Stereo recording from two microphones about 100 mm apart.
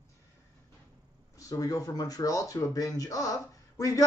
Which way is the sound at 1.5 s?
35° left (ahead or behind).